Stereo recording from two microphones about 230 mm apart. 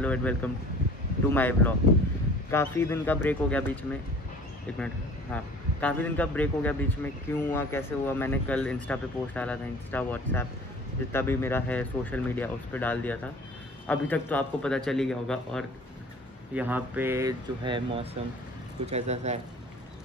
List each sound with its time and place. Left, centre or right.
0.0 s a man's voice: centre; by 19.4 s right